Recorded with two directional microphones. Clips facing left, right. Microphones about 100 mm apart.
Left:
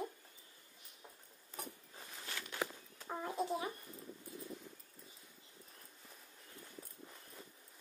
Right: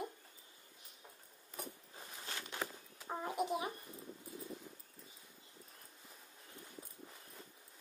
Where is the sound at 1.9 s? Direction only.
15° right (ahead or behind).